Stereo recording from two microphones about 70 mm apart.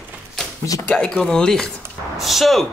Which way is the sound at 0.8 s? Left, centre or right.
Centre.